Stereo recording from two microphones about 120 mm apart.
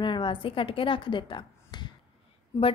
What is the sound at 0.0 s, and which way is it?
A woman's voice, 40° left (ahead or behind).